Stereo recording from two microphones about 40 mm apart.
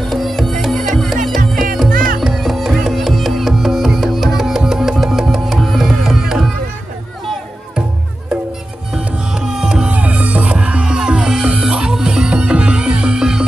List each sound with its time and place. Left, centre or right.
0.0 s music: centre
5.3 s tabla: centre
8.9 s music: centre
9.8 s music: right; by 13.5 s centre